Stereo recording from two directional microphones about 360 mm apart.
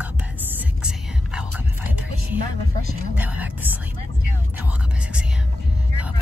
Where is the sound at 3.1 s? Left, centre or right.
Centre.